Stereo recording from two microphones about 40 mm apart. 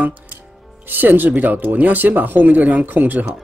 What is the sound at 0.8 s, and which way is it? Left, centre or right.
Speech, right.